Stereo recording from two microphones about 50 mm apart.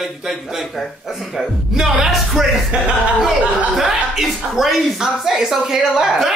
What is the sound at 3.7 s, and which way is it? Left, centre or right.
A woman's voice, centre.